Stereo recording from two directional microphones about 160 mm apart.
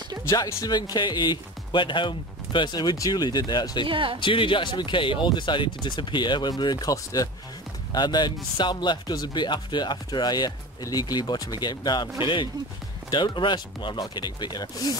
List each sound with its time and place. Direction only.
0.3 s a man's voice: 20° left (ahead or behind)
3.8 s speech: 30° right (ahead or behind)
4.2 s a man's voice: 30° left (ahead or behind)
13.1 s a man's voice: 30° left (ahead or behind)